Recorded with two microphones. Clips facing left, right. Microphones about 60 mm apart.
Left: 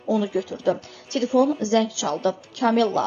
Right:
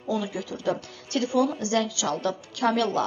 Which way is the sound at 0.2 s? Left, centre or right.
Left.